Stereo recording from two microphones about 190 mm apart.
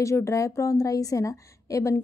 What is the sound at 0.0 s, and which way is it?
A woman's voice, 15° left (ahead or behind).